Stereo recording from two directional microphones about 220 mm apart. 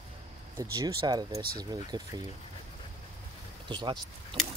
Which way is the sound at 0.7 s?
20° right (ahead or behind).